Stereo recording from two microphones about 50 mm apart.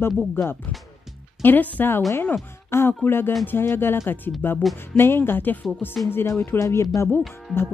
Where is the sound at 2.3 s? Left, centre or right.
Left.